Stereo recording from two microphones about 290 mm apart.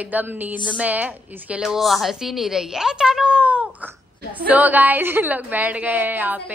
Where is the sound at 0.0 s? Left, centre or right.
Centre.